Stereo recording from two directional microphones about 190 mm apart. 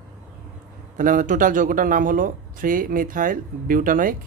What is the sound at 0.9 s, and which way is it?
Speech, 45° right (ahead or behind).